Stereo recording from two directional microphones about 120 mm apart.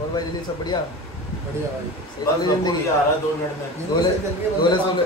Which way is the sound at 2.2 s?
35° left (ahead or behind).